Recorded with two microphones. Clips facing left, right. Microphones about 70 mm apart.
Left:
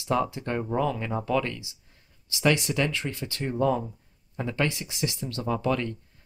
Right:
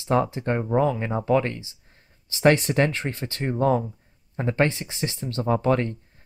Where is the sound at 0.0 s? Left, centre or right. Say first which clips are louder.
Right 4 dB; right.